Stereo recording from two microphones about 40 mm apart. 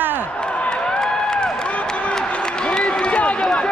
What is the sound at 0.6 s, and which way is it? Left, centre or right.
Crowd, left.